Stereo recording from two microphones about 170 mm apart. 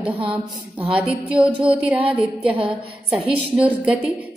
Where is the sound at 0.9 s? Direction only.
5° right (ahead or behind).